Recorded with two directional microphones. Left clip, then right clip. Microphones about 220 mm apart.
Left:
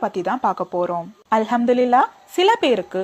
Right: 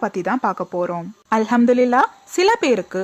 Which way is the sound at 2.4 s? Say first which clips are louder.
Even; 45° right (ahead or behind).